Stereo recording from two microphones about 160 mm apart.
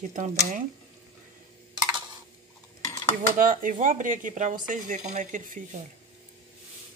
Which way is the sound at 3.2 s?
55° right (ahead or behind).